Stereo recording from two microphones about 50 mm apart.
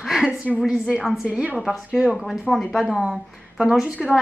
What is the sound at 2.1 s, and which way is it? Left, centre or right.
Speech, centre.